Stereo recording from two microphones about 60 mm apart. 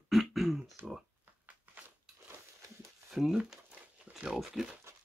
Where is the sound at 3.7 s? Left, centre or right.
Centre.